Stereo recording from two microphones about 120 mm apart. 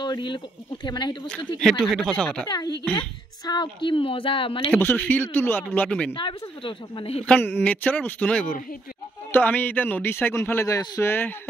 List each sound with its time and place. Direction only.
0.0 s speech: 40° left (ahead or behind)
1.6 s speech: 5° left (ahead or behind)
2.4 s a woman's voice: 35° left (ahead or behind)
4.7 s a man's voice: 15° left (ahead or behind)
6.1 s a woman's voice: 45° left (ahead or behind)
7.2 s a man's voice: 15° left (ahead or behind)